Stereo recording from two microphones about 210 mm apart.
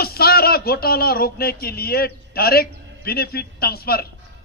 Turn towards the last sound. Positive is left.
turn(degrees=45)  # may be behind; listen again after turning